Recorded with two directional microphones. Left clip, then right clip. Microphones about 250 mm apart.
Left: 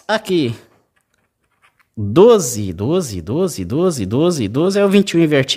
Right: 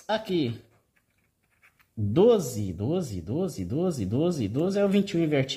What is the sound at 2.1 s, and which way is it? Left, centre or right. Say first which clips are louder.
Speech: left 11 dB; left.